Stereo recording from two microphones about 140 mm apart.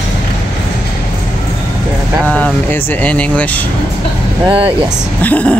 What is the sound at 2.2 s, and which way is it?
Speech, 10° left (ahead or behind).